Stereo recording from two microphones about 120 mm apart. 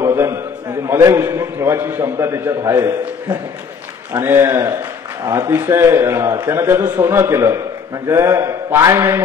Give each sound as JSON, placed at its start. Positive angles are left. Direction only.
{"t": 0.0, "sound": "a sound", "side_deg": -25}
{"t": 0.8, "sound": "a man's voice", "side_deg": -20}
{"t": 4.2, "sound": "a man's voice", "side_deg": -20}